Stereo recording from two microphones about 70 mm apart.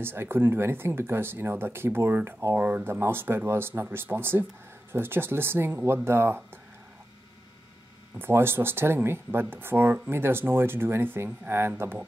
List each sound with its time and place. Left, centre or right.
0.0 s speech: right
8.2 s speech: right